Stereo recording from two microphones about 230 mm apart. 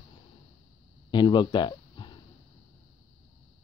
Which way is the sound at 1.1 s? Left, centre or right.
Centre.